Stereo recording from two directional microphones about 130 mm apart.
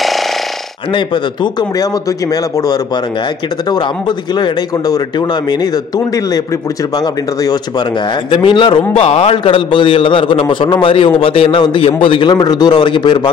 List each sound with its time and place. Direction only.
0.9 s a man's voice: 35° left (ahead or behind)
8.3 s a man's voice: 40° left (ahead or behind)
8.9 s a man's voice: 50° left (ahead or behind); by 13.3 s 35° left (ahead or behind)